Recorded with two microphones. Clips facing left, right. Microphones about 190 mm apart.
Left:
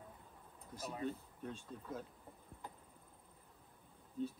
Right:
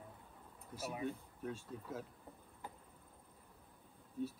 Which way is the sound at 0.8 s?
10° right (ahead or behind).